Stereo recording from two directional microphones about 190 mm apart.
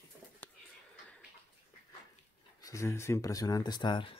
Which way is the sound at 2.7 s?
15° left (ahead or behind).